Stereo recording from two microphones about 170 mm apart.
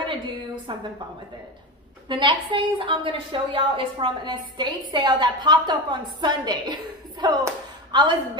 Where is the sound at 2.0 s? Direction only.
30° right (ahead or behind).